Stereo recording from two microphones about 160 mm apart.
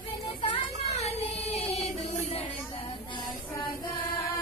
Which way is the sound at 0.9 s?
40° left (ahead or behind).